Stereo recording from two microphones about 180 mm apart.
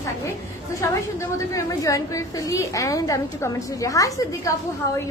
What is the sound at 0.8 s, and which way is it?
A woman's voice, 15° left (ahead or behind).